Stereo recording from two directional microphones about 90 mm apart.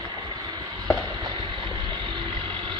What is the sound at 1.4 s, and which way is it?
Vehicle, 60° right (ahead or behind).